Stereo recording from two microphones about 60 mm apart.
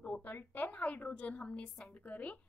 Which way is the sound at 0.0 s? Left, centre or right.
Left.